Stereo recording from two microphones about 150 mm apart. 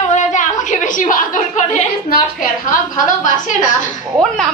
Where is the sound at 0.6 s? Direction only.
55° left (ahead or behind).